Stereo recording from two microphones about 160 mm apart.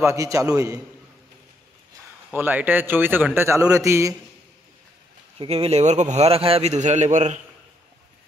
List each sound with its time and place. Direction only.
0.0 s a man's voice: 20° right (ahead or behind)
2.3 s speech: 10° right (ahead or behind)
5.4 s a man's voice: 40° right (ahead or behind)